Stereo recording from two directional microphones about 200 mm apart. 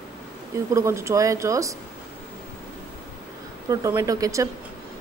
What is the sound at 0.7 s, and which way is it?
Speech, 15° right (ahead or behind).